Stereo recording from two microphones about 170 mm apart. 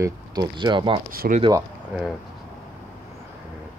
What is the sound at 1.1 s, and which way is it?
Speech, 60° right (ahead or behind).